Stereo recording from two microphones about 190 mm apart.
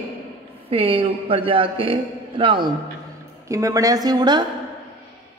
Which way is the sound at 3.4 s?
15° right (ahead or behind).